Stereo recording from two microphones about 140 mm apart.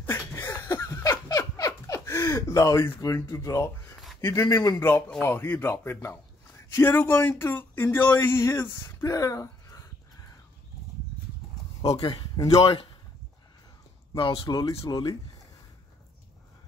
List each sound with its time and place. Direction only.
0.0 s a sound: 15° left (ahead or behind)
4.3 s speech: 25° left (ahead or behind)
11.9 s speech: 30° left (ahead or behind)
14.1 s speech: 40° left (ahead or behind)
14.4 s speech: 25° left (ahead or behind)